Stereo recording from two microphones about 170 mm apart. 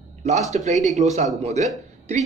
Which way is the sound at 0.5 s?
40° right (ahead or behind).